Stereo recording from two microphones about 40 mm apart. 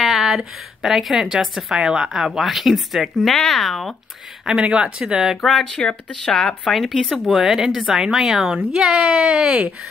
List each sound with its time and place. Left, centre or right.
0.0 s a sound: centre
1.1 s speech: centre
1.7 s speech: centre
3.3 s speech: centre
4.6 s speech: right
5.4 s speech: centre
5.8 s speech: left
6.2 s speech: centre
6.8 s speech: centre
7.3 s speech: centre
9.2 s speech: centre